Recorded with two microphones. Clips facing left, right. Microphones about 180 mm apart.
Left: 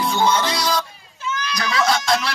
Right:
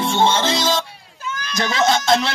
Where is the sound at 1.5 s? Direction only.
25° right (ahead or behind).